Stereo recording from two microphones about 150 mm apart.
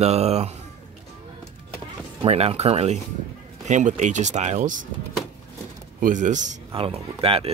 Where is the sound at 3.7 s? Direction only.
55° right (ahead or behind).